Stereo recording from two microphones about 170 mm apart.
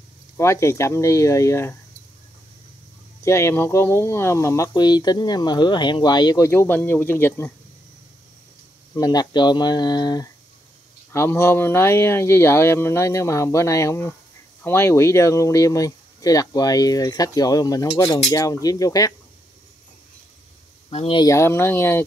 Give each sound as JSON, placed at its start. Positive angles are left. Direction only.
{"t": 0.4, "sound": "speech", "side_deg": 15}
{"t": 3.3, "sound": "speech", "side_deg": 15}
{"t": 8.9, "sound": "speech", "side_deg": 20}
{"t": 20.9, "sound": "speech", "side_deg": 35}
{"t": 21.2, "sound": "speech", "side_deg": 15}